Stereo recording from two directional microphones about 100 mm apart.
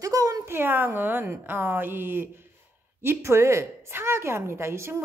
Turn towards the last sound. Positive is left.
turn(degrees=-25)  # may be behind; listen again after turning